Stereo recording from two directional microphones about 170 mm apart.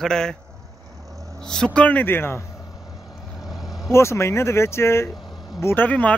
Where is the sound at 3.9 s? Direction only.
15° left (ahead or behind).